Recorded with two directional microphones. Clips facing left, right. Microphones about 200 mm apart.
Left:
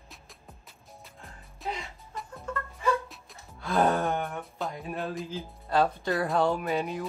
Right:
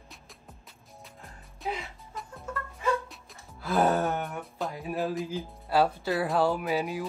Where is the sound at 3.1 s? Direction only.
Centre (ahead or behind).